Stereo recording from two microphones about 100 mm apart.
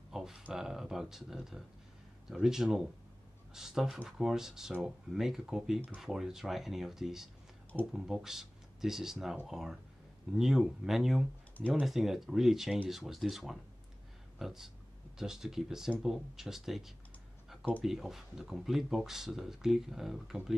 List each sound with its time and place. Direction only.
0.1 s a sound: 5° right (ahead or behind)
0.5 s speech: 5° right (ahead or behind)
11.5 s speech: 15° left (ahead or behind)
11.8 s speech: 5° right (ahead or behind)